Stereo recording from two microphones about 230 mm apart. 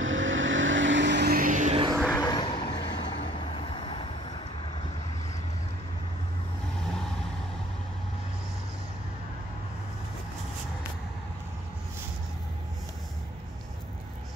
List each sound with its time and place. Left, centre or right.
0.0 s vehicle: right
2.0 s vehicle: centre